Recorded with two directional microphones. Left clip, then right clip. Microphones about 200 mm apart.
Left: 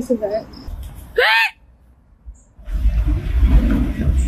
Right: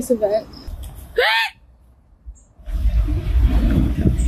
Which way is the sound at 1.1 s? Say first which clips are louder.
Left 3 dB; 10° left (ahead or behind).